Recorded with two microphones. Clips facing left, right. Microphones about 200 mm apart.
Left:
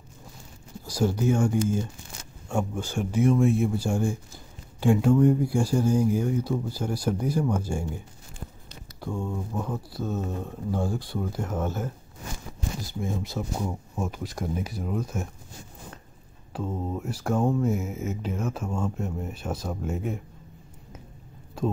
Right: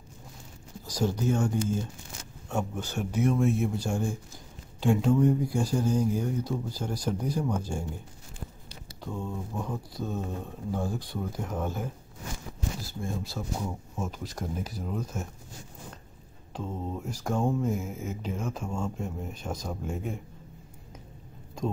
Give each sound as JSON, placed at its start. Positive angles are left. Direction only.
{"t": 0.8, "sound": "speech", "side_deg": 10}
{"t": 9.0, "sound": "speech", "side_deg": 10}
{"t": 13.0, "sound": "speech", "side_deg": 20}
{"t": 16.5, "sound": "speech", "side_deg": 5}